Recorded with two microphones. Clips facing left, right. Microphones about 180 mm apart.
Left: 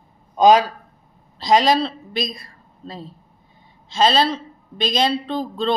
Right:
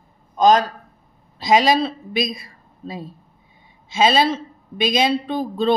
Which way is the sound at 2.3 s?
10° right (ahead or behind).